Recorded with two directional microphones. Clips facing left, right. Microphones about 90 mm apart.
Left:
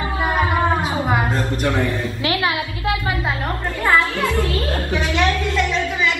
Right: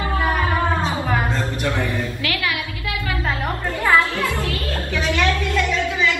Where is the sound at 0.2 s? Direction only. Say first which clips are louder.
Left 3 dB; 20° left (ahead or behind).